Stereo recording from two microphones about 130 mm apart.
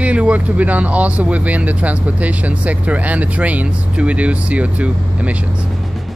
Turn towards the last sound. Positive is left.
turn(degrees=-10)  # may be behind; listen again after turning